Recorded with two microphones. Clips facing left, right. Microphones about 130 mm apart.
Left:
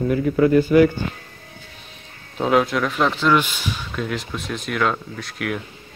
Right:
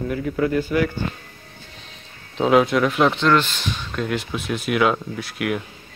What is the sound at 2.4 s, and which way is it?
Speech, centre (ahead or behind).